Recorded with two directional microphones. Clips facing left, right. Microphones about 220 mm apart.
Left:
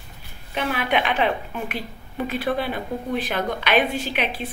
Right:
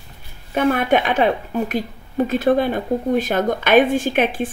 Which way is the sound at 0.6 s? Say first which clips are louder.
Right 7 dB; 50° right (ahead or behind).